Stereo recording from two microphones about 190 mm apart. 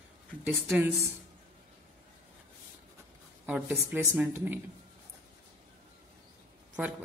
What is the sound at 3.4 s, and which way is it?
Speech, 5° right (ahead or behind).